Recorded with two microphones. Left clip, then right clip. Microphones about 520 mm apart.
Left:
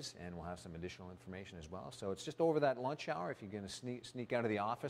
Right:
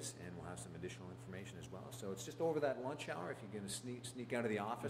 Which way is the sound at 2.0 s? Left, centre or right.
Left.